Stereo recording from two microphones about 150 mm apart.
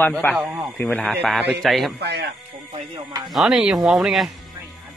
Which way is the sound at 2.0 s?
90° right.